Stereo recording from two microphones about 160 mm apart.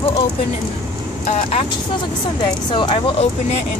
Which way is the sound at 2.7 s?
30° left (ahead or behind).